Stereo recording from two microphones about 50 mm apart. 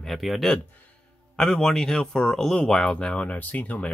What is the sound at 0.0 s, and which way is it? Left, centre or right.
Speech, centre.